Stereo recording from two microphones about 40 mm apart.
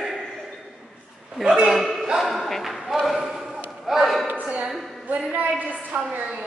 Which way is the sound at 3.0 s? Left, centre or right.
Centre.